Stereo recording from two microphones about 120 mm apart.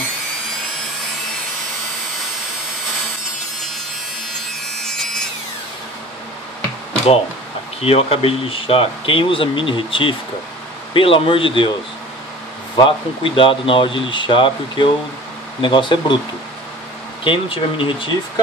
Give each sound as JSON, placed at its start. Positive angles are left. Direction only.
{"t": 4.7, "sound": "a sound", "side_deg": 5}
{"t": 7.8, "sound": "speech", "side_deg": 55}
{"t": 12.7, "sound": "speech", "side_deg": 45}
{"t": 17.2, "sound": "speech", "side_deg": 45}